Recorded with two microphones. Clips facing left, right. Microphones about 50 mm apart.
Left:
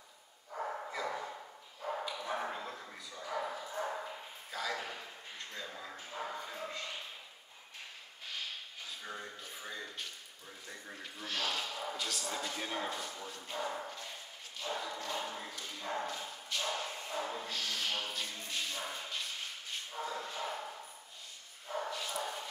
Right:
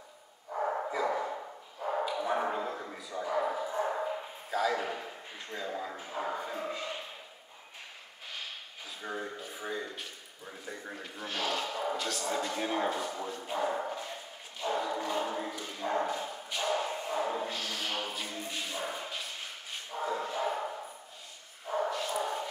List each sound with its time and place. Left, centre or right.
0.6 s bow-wow: right
1.0 s dog: right
2.1 s bow-wow: right
4.5 s a sound: centre
9.0 s a sound: centre
11.2 s a sound: centre
12.0 s a sound: centre
12.4 s speech: centre
13.0 s bow-wow: right
14.6 s dog: centre
19.9 s bow-wow: right
21.9 s dog: centre